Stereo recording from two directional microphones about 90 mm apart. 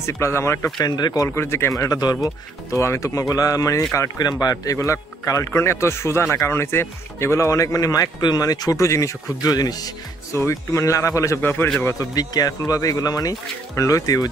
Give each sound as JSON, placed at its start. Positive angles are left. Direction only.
{"t": 0.0, "sound": "a man's voice", "side_deg": 30}
{"t": 0.7, "sound": "speech", "side_deg": 50}
{"t": 1.4, "sound": "a man's voice", "side_deg": 30}
{"t": 1.8, "sound": "speech", "side_deg": 45}
{"t": 2.7, "sound": "a man's voice", "side_deg": 35}
{"t": 4.2, "sound": "a man's voice", "side_deg": 45}
{"t": 10.4, "sound": "a man's voice", "side_deg": 35}
{"t": 11.4, "sound": "a man's voice", "side_deg": 20}
{"t": 11.8, "sound": "a man's voice", "side_deg": 40}